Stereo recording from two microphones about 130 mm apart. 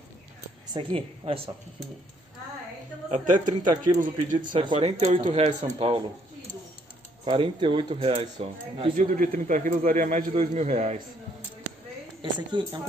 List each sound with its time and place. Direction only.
0.7 s speech: 45° right (ahead or behind)
3.1 s speech: 80° right
4.6 s speech: 50° right (ahead or behind)
7.2 s speech: 40° right (ahead or behind)
8.9 s a man's voice: 90° right
10.4 s a man's voice: 70° right (ahead or behind)
12.2 s a woman's voice: 35° right (ahead or behind)